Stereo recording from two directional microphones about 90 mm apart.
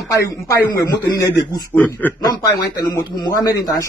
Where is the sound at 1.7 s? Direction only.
20° left (ahead or behind).